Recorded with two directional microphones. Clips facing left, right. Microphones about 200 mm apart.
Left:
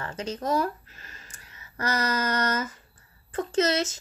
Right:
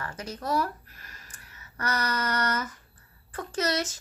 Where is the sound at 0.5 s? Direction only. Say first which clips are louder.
Left 1 dB; 25° left (ahead or behind).